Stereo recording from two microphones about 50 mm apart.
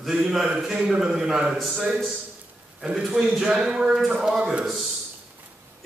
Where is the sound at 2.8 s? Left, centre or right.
Centre.